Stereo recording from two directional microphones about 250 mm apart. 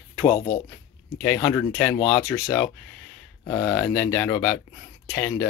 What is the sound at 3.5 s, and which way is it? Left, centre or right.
Speech, centre.